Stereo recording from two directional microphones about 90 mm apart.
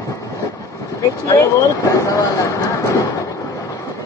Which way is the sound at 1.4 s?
40° left (ahead or behind).